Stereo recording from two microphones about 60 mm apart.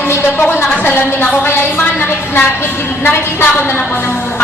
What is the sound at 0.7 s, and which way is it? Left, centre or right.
Speech, left.